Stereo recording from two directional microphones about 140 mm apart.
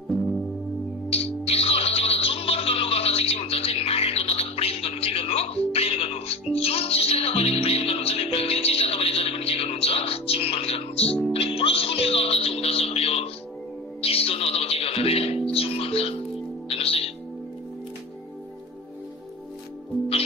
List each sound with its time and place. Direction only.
1.1 s music: 45° left (ahead or behind)